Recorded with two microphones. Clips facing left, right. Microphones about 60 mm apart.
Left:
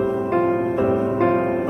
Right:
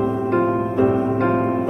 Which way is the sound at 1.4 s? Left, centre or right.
Centre.